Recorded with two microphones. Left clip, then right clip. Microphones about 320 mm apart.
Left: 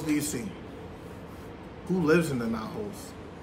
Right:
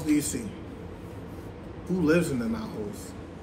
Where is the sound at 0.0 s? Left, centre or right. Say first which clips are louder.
Right 3 dB; centre.